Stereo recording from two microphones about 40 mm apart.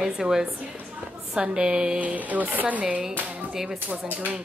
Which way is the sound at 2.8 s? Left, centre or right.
Right.